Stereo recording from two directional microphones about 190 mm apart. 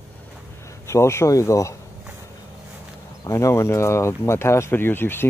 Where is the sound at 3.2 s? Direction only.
15° left (ahead or behind).